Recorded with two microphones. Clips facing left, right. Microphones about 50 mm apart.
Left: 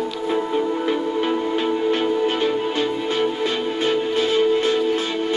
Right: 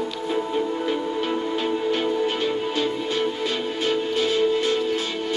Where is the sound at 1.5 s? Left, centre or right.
Left.